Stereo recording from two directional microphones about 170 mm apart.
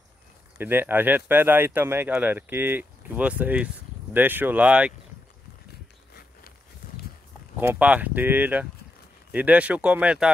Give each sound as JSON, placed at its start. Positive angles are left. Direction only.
{"t": 0.6, "sound": "speech", "side_deg": -10}
{"t": 6.8, "sound": "livestock", "side_deg": 65}
{"t": 7.6, "sound": "speech", "side_deg": -10}